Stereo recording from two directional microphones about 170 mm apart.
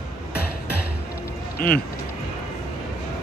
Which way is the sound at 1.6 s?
65° left (ahead or behind).